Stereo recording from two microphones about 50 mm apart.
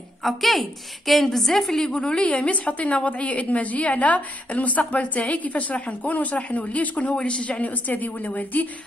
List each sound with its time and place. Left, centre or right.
0.2 s a woman's voice: centre
1.9 s a woman's voice: left